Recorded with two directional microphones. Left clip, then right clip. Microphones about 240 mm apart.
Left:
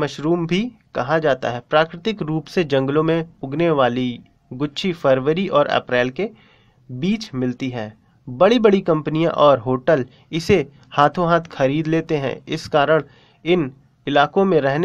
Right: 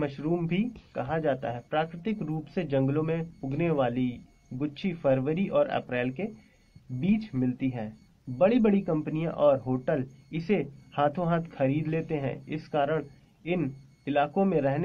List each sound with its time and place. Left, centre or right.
0.0 s speech: left